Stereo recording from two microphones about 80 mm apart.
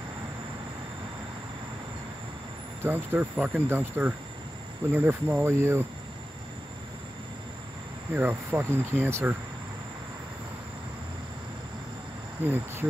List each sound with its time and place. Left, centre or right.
2.8 s speech: right
8.1 s speech: right
12.4 s speech: right